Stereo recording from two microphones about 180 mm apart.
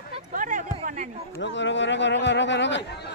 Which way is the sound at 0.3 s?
45° right (ahead or behind).